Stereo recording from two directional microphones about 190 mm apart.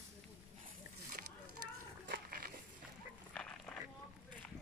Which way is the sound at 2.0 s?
50° right (ahead or behind).